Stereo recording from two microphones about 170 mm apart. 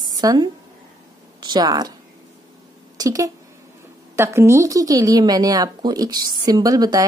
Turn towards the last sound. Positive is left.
turn(degrees=-20)  # may be behind; listen again after turning